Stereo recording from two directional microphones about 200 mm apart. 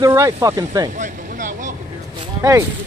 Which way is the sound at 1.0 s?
40° right (ahead or behind).